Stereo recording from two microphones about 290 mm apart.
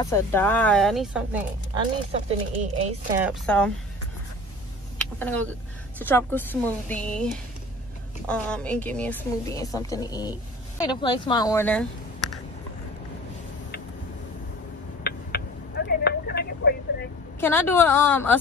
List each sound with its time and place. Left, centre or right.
0.0 s speech: centre
2.2 s speech: right
3.2 s speech: centre
4.9 s vehicle: centre
5.9 s a woman's voice: centre
15.0 s telephone: left
17.4 s a woman's voice: centre